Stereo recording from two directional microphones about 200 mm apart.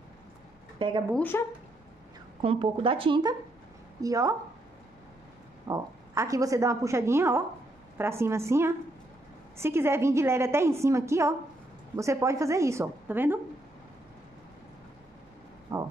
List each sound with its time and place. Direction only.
0.7 s speech: 25° right (ahead or behind)
1.1 s speech: 10° left (ahead or behind)
2.4 s a woman's voice: 25° right (ahead or behind)
5.7 s a woman's voice: 15° right (ahead or behind)
15.7 s a sound: 15° right (ahead or behind)